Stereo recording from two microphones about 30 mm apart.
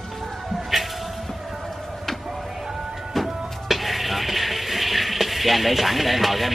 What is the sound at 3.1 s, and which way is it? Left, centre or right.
Music, centre.